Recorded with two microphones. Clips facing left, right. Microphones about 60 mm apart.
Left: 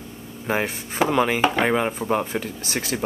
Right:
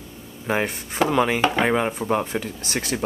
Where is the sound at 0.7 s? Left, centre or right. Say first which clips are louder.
Even; centre.